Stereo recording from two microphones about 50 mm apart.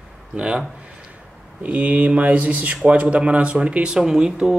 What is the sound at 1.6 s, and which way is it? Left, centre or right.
Speech, right.